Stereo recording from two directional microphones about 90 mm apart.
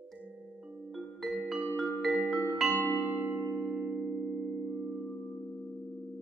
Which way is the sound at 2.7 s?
20° left (ahead or behind).